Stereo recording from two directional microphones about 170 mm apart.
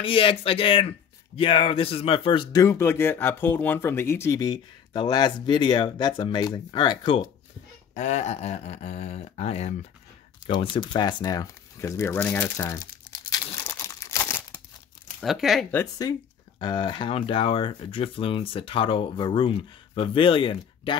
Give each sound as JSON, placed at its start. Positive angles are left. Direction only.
{"t": 0.0, "sound": "speech", "side_deg": 30}
{"t": 7.9, "sound": "speech", "side_deg": 45}
{"t": 10.4, "sound": "speech", "side_deg": 30}
{"t": 13.3, "sound": "crumpling", "side_deg": 15}
{"t": 15.1, "sound": "speech", "side_deg": 0}
{"t": 15.7, "sound": "speech", "side_deg": 20}